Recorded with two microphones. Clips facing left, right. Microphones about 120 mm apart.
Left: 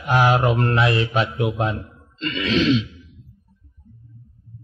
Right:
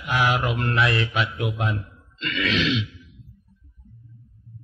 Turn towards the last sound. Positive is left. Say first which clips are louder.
# left 6 dB
turn(degrees=35)  # may be behind; listen again after turning